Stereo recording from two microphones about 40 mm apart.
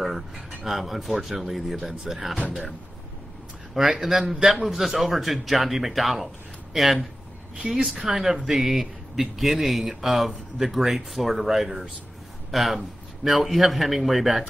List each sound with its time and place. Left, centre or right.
0.7 s speech: centre
3.8 s a man's voice: centre
4.1 s a man's voice: centre
7.5 s a man's voice: right
8.0 s speech: centre